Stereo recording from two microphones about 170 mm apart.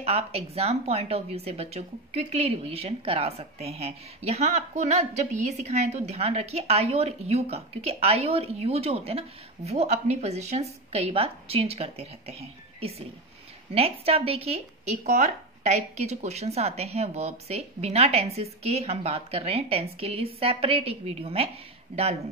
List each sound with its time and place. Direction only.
0.0 s speech: 35° right (ahead or behind)